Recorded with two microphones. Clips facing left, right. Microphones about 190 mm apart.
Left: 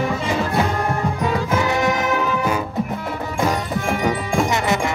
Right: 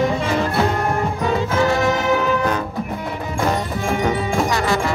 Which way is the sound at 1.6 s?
20° left (ahead or behind).